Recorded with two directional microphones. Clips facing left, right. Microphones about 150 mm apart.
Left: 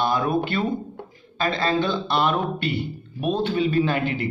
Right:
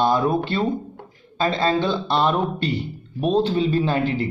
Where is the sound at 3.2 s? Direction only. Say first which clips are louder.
Right 3 dB; 30° right (ahead or behind).